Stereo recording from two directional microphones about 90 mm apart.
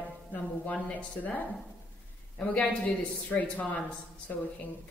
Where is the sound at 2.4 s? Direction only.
15° left (ahead or behind).